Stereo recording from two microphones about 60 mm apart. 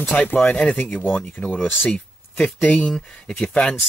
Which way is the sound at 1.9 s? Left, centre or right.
Centre.